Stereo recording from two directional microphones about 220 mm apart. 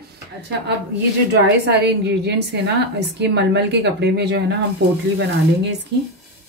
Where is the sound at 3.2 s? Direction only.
50° right (ahead or behind).